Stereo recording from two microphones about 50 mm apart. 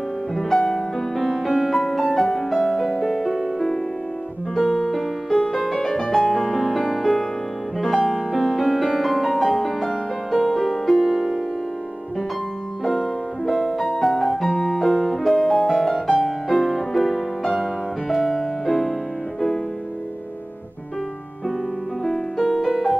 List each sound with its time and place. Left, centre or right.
0.4 s music: centre
12.8 s music: centre
22.0 s music: centre